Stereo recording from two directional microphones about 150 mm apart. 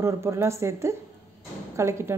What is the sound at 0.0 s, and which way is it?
A woman's voice, 20° right (ahead or behind).